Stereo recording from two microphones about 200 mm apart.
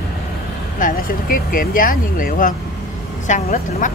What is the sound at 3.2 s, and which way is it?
Speech, 40° left (ahead or behind).